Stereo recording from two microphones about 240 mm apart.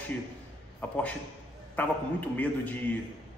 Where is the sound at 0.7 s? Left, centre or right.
Centre.